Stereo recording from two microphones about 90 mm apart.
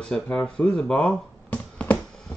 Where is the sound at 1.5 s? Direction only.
20° left (ahead or behind).